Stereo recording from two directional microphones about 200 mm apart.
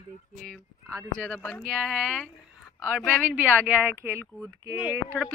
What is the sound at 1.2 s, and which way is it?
Speech, 5° left (ahead or behind).